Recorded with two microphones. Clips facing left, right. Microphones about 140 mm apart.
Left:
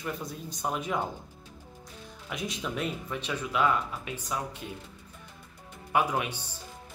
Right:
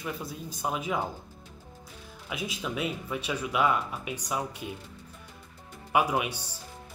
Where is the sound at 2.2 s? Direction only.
5° right (ahead or behind).